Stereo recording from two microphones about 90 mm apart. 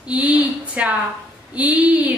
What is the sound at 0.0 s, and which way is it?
A woman's voice, 15° right (ahead or behind).